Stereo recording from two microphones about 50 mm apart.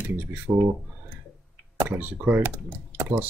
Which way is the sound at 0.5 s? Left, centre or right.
Right.